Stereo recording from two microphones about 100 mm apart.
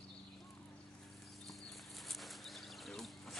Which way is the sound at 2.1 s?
Centre (ahead or behind).